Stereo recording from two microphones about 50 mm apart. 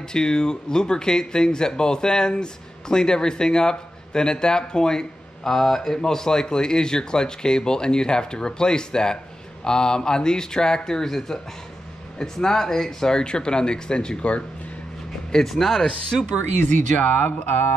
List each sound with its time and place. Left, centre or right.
0.1 s speech: centre
15.3 s speech: centre
17.2 s speech: left